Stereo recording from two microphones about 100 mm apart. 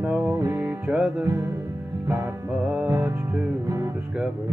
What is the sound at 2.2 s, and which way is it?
Music, 15° right (ahead or behind).